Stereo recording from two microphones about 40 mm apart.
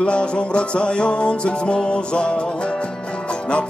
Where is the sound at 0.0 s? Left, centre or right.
Left.